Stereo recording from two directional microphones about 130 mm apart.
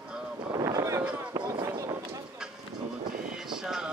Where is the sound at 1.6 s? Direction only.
25° right (ahead or behind).